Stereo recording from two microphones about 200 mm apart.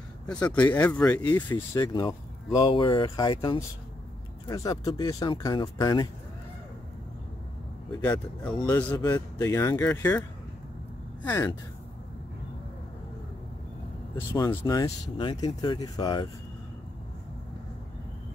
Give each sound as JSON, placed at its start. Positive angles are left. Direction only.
{"t": 0.3, "sound": "speech", "side_deg": 5}
{"t": 1.3, "sound": "speech", "side_deg": 20}
{"t": 8.6, "sound": "speech", "side_deg": 15}
{"t": 11.2, "sound": "speech", "side_deg": 15}
{"t": 14.1, "sound": "speech", "side_deg": 15}